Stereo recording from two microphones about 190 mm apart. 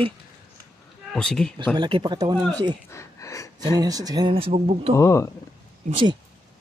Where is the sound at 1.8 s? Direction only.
25° right (ahead or behind).